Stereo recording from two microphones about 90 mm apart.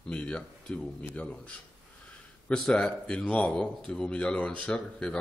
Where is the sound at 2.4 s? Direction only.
10° left (ahead or behind).